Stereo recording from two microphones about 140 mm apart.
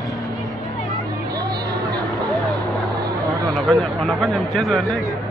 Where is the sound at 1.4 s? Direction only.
25° right (ahead or behind).